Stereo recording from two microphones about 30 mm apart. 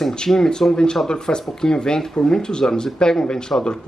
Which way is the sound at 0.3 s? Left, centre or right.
Centre.